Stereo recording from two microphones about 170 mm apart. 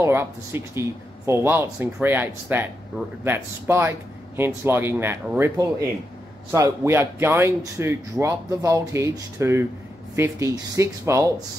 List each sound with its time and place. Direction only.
0.0 s speech: 15° right (ahead or behind)